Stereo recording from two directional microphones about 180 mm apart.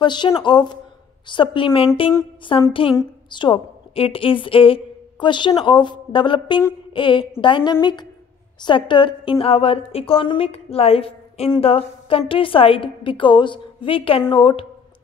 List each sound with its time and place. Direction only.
0.0 s a woman's voice: 25° left (ahead or behind)